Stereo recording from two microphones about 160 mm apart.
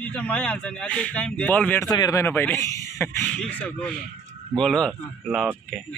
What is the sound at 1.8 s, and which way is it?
A man's voice, 20° left (ahead or behind).